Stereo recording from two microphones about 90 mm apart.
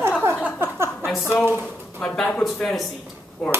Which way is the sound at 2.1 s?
15° left (ahead or behind).